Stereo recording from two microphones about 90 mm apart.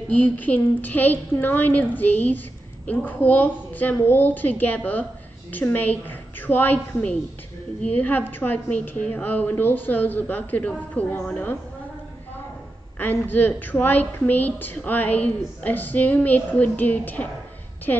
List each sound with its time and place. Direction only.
0.1 s a woman's voice: 20° left (ahead or behind)
13.0 s a woman's voice: 20° left (ahead or behind)